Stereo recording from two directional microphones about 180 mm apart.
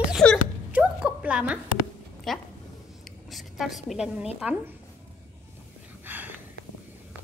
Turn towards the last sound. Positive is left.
turn(degrees=-10)  # may be behind; listen again after turning